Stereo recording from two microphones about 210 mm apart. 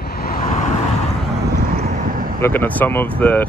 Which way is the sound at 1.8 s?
35° right (ahead or behind).